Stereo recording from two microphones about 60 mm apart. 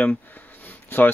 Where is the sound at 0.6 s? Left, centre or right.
Left.